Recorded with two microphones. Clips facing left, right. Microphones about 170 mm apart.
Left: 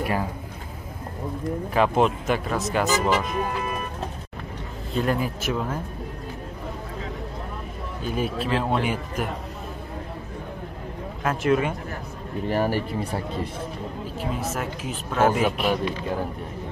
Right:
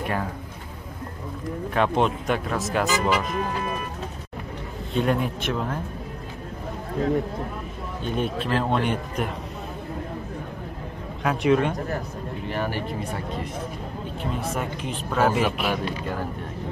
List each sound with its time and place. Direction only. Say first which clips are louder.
1.7 s speech: left 1 dB; 5° left (ahead or behind)
4.9 s speech: right 1 dB; centre (ahead or behind)
8.0 s speech: even; 5° left (ahead or behind)
11.2 s speech: right 1 dB; centre (ahead or behind)
12.4 s speech: left 5 dB; 40° left (ahead or behind)
14.2 s speech: even; 5° left (ahead or behind)